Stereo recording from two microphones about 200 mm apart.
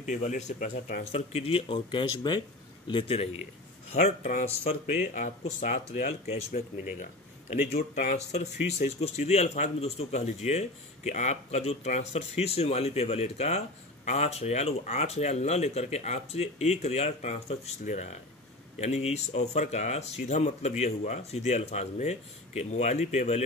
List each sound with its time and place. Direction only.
0.0 s speech: 40° left (ahead or behind)
1.1 s speech: 30° left (ahead or behind)
3.9 s speech: 40° left (ahead or behind)
6.5 s speech: 45° left (ahead or behind)